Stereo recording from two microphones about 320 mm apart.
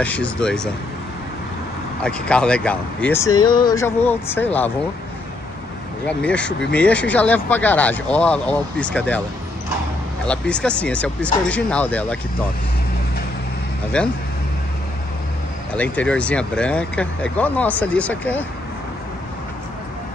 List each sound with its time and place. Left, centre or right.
0.0 s speech: centre
2.0 s speech: centre
6.0 s speech: centre
10.2 s speech: centre
13.9 s speech: centre
15.7 s speech: centre